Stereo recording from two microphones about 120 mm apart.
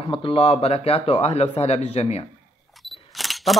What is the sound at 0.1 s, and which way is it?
Speech, 50° left (ahead or behind).